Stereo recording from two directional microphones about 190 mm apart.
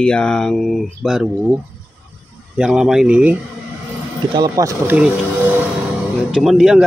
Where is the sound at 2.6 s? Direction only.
5° right (ahead or behind).